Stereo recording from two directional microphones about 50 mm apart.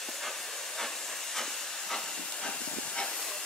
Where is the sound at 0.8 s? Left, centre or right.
Centre.